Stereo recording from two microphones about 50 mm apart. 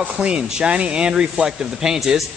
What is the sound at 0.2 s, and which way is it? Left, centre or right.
Speech, centre.